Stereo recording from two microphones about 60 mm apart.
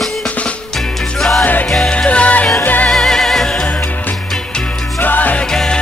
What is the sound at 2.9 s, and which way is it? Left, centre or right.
Music, centre.